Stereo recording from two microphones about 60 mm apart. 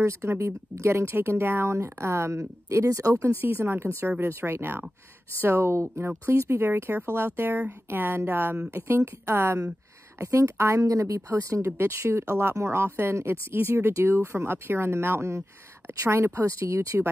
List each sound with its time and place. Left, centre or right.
0.0 s speech: right
3.3 s speech: right
5.7 s speech: right
10.1 s speech: right